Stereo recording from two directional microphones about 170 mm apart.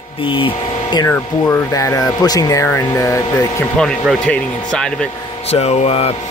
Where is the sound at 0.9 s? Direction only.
20° left (ahead or behind).